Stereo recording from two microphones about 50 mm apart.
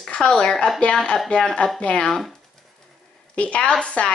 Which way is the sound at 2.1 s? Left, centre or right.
Centre.